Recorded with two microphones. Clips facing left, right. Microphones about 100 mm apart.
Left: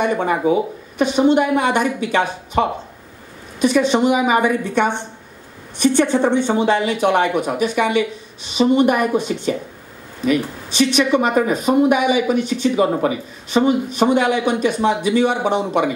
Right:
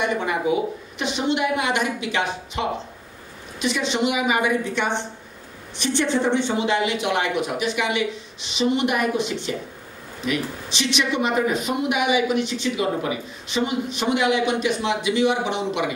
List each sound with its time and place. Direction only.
0.0 s speech: 40° left (ahead or behind)
3.6 s speech: 45° left (ahead or behind)